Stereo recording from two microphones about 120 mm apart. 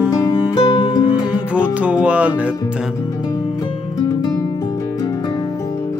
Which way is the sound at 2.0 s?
10° right (ahead or behind).